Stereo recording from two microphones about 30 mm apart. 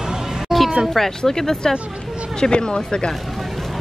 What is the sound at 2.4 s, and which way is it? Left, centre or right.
Speech, left.